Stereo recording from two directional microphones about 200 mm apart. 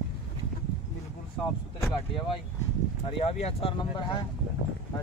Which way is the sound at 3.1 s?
30° left (ahead or behind).